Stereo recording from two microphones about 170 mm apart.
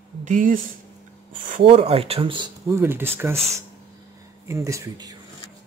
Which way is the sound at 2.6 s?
15° right (ahead or behind).